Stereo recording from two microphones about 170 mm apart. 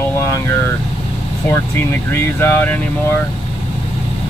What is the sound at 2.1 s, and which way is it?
Speech, 10° left (ahead or behind).